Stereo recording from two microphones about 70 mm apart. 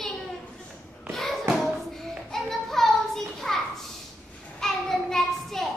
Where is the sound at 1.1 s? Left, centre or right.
Centre.